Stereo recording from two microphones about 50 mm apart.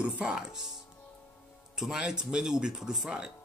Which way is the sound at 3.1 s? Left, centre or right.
Right.